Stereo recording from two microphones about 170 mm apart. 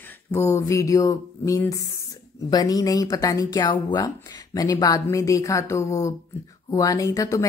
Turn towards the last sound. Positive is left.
turn(degrees=20)  # may be behind; listen again after turning